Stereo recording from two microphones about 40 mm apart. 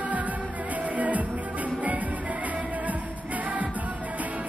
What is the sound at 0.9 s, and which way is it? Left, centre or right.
Music, right.